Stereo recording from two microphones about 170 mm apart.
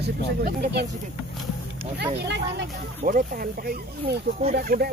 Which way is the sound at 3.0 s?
55° right (ahead or behind).